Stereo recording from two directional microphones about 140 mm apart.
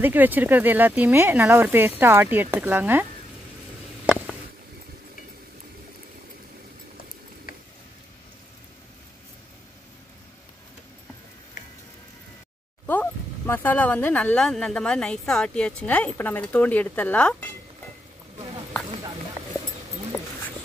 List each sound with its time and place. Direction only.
0.0 s speech: 15° right (ahead or behind)
7.5 s a sound: 90° left
12.8 s speech: 15° left (ahead or behind)